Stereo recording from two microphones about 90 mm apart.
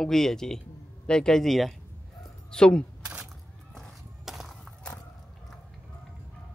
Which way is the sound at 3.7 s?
Centre (ahead or behind).